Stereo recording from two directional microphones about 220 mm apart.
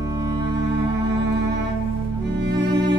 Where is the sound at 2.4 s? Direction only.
50° right (ahead or behind).